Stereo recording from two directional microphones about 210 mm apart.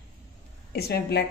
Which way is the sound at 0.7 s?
50° left (ahead or behind).